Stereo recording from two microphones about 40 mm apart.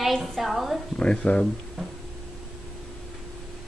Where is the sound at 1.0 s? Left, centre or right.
Left.